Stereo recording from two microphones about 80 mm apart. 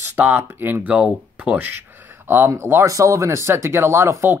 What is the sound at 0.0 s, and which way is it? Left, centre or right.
Speech, right.